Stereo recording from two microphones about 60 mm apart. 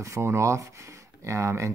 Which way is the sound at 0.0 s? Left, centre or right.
Right.